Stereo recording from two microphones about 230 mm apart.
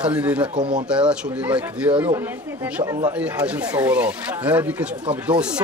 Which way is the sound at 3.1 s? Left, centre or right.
Centre.